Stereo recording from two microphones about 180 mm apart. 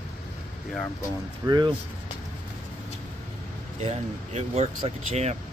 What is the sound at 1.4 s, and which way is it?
Speech, 25° right (ahead or behind).